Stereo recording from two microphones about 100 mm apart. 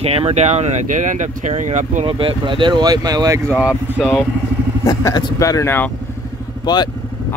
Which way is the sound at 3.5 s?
5° right (ahead or behind).